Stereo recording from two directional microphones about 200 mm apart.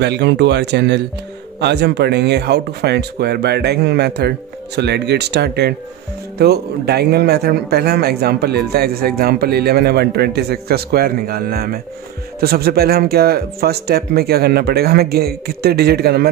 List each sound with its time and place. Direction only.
0.0 s speech: 60° right (ahead or behind)